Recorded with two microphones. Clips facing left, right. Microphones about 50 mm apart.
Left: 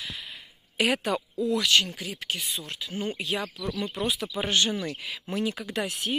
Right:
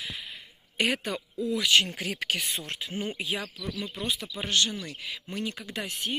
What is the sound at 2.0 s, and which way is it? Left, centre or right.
Speech, right.